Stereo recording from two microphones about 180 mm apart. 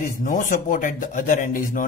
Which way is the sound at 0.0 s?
45° left (ahead or behind).